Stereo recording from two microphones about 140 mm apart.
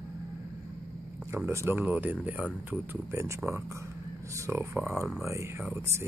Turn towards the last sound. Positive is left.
turn(degrees=-15)  # may be behind; listen again after turning